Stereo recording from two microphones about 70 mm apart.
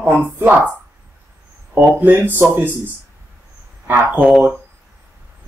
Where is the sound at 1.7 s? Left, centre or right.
Right.